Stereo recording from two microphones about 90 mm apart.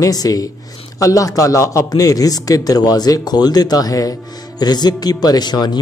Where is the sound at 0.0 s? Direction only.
45° left (ahead or behind).